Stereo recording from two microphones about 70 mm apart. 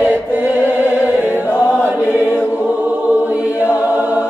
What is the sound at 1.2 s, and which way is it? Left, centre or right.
Music, right.